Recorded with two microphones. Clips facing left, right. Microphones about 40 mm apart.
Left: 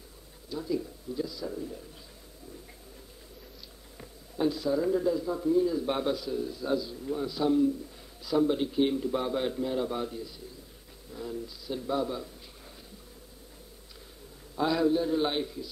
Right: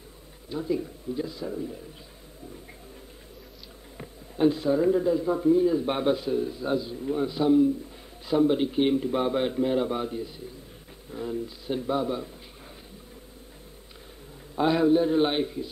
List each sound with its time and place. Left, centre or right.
0.5 s speech: right
1.5 s speech: centre
4.0 s speech: right
14.5 s speech: right